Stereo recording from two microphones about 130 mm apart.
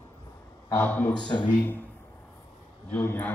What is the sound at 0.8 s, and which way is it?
Speech, 15° left (ahead or behind).